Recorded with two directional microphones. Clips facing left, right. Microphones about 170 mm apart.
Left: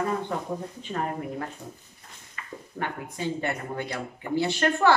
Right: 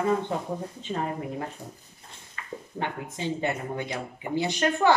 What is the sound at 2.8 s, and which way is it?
Speech, 20° right (ahead or behind).